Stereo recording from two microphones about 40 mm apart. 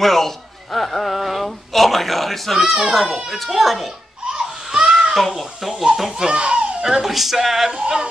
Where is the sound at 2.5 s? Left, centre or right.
Centre.